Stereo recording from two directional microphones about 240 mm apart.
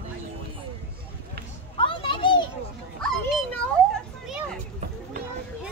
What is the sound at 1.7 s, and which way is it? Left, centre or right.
Children playing, left.